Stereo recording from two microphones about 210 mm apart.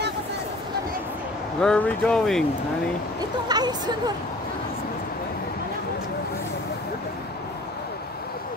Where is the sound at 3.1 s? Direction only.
20° right (ahead or behind).